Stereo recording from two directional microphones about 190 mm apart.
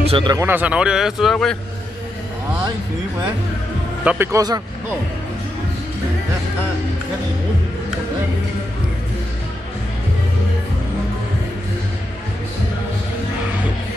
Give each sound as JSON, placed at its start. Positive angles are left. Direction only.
{"t": 0.1, "sound": "speech", "side_deg": -25}
{"t": 0.5, "sound": "a man's voice", "side_deg": -5}
{"t": 4.0, "sound": "a man's voice", "side_deg": -10}